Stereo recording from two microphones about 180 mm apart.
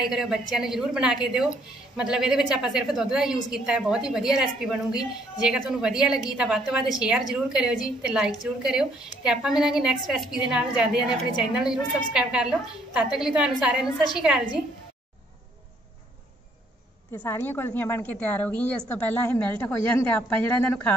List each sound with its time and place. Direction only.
0.0 s a woman's voice: 5° right (ahead or behind)
17.1 s a woman's voice: 25° left (ahead or behind)
17.4 s a woman's voice: 10° left (ahead or behind)